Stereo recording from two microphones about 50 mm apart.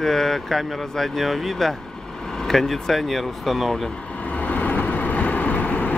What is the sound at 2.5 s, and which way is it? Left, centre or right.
Speech, centre.